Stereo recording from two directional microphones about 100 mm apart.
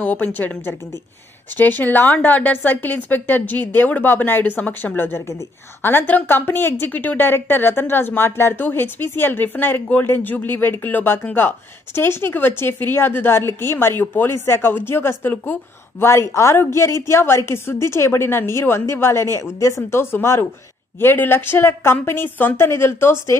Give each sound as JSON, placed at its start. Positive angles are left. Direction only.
{"t": 0.0, "sound": "a woman's voice", "side_deg": 15}